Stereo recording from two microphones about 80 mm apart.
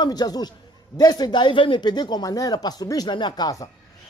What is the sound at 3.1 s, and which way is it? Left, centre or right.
Speech, left.